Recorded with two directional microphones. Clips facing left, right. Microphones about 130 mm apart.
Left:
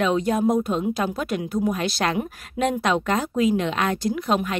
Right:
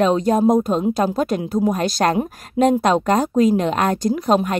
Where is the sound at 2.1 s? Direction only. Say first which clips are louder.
Right 6 dB; 30° right (ahead or behind).